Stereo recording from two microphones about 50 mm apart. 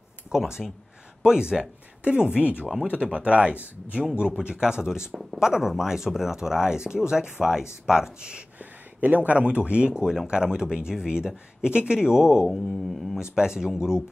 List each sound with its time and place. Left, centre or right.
0.3 s speech: centre
8.5 s speech: right; by 12.4 s centre
12.4 s mantra: centre
13.4 s speech: centre